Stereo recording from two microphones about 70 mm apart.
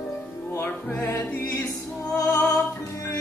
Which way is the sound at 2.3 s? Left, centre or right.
Left.